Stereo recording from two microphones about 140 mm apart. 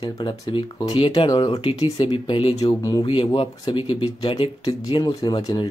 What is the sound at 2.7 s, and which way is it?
Speech, 25° left (ahead or behind).